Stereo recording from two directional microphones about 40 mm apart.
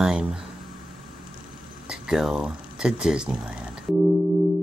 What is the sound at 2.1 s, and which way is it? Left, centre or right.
Speech, centre.